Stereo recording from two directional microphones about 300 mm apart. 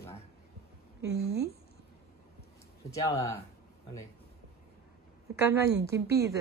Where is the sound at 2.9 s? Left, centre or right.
Centre.